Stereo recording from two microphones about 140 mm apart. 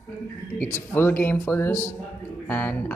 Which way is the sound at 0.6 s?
15° left (ahead or behind).